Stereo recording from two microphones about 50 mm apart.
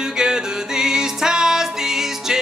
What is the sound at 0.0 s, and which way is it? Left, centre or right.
Music, centre.